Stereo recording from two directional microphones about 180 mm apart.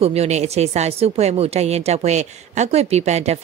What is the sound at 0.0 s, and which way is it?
A woman's voice, 35° right (ahead or behind).